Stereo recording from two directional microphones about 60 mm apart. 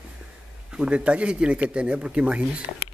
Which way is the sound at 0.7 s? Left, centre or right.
Centre.